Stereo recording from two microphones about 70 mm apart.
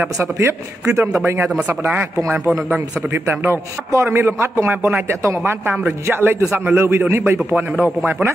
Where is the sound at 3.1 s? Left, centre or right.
Right.